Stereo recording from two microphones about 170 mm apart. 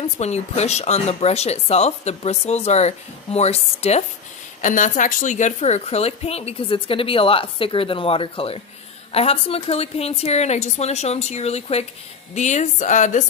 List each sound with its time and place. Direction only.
0.0 s a woman's voice: 40° left (ahead or behind)
4.6 s a woman's voice: 50° left (ahead or behind)